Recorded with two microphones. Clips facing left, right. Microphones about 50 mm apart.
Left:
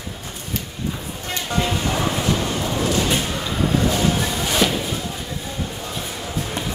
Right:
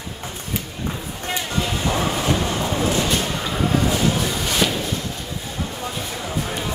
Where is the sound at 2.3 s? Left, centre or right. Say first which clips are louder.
Right 1 dB; centre.